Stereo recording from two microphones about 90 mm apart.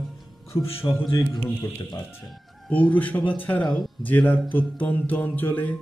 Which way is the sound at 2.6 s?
20° left (ahead or behind).